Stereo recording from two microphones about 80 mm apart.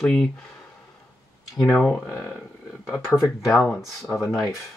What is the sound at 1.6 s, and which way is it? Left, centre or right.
Speech, centre.